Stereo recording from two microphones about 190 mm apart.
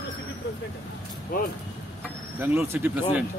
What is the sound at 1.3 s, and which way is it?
Speech, 50° left (ahead or behind).